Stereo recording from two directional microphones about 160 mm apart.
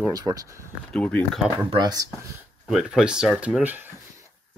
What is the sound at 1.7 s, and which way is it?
Speech, 25° right (ahead or behind).